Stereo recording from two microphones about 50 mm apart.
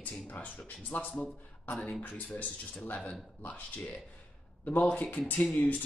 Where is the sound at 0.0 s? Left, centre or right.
Left.